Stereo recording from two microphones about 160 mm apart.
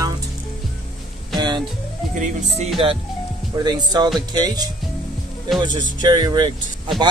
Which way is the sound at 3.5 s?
25° right (ahead or behind).